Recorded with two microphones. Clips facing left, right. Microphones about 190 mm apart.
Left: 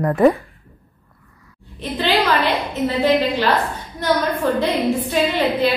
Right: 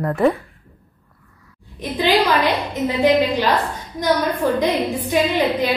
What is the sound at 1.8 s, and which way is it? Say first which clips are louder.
A woman's voice: right 2 dB; 10° right (ahead or behind).